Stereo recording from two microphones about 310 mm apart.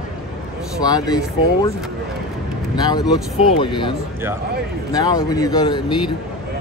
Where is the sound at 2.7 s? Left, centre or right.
Centre.